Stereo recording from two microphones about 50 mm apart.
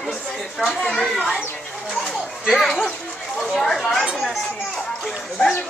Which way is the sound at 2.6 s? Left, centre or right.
Centre.